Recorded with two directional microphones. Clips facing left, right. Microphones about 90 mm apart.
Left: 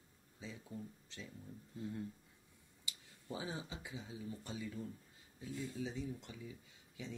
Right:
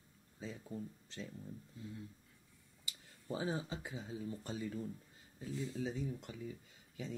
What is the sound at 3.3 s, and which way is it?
Speech, 45° right (ahead or behind).